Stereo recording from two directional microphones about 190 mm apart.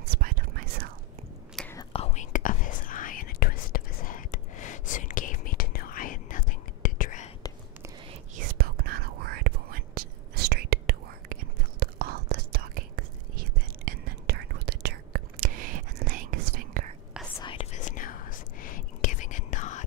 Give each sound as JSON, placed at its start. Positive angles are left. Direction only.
{"t": 0.1, "sound": "whispering", "side_deg": -45}
{"t": 1.8, "sound": "whispering", "side_deg": 30}
{"t": 8.4, "sound": "whispering", "side_deg": -50}
{"t": 17.4, "sound": "whispering", "side_deg": 30}